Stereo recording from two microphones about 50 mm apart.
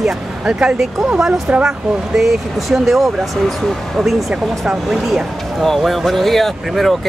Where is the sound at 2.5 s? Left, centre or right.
Centre.